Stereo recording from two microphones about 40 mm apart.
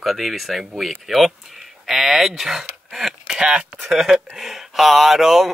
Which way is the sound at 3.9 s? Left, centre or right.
Centre.